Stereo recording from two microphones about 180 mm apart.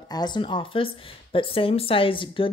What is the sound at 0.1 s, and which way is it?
A woman's voice, 25° left (ahead or behind).